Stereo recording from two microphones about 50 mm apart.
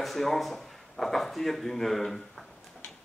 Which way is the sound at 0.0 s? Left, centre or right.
Centre.